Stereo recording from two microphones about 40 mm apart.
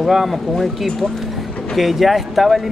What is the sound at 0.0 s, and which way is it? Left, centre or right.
Speech, centre.